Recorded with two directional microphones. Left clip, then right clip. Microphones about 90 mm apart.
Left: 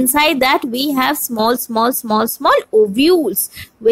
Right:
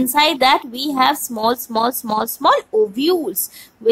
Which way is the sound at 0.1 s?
40° left (ahead or behind).